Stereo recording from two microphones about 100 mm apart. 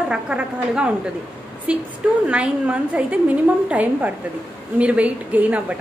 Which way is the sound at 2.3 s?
10° right (ahead or behind).